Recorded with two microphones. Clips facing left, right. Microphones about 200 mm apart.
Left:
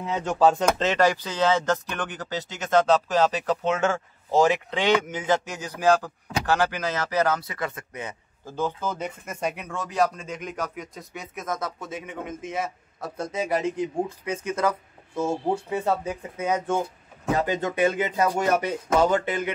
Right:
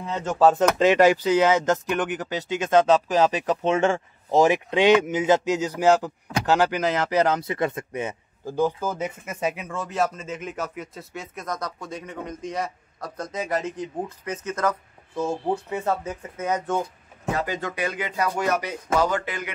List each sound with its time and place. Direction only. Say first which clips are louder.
0.0 s a man's voice: right 1 dB; centre (ahead or behind); by 8.5 s 25° right (ahead or behind)
8.5 s speech: right 4 dB; 10° right (ahead or behind); by 16.8 s 10° left (ahead or behind)
17.4 s speech: left 6 dB; 20° left (ahead or behind)